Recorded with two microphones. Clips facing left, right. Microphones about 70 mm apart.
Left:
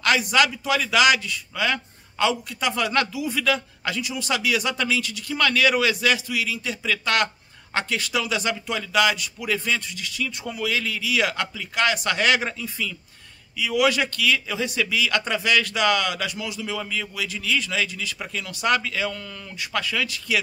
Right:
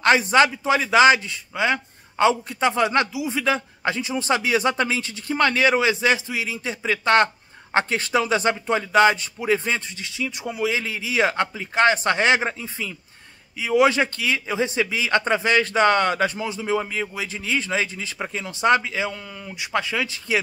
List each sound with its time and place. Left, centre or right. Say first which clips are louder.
0.0 s a man's voice: right 4 dB; right